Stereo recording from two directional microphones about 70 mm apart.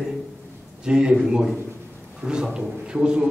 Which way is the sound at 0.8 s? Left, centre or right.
Centre.